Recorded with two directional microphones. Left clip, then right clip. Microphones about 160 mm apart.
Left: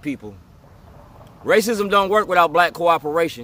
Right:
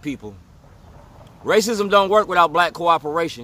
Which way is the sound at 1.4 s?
5° right (ahead or behind).